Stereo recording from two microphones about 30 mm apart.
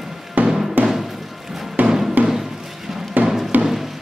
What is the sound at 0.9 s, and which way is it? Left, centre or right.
Music, centre.